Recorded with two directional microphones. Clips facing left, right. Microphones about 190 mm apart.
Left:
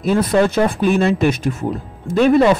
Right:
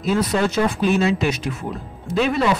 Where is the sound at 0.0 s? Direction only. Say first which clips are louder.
Left 5 dB; 55° left (ahead or behind).